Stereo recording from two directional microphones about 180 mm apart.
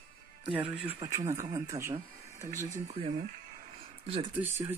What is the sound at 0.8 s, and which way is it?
Speech, 20° right (ahead or behind).